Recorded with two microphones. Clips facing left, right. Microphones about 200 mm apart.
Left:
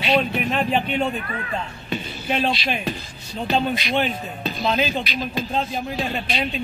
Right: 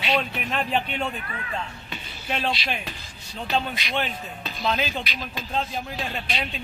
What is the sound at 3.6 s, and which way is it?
Speech, 10° left (ahead or behind).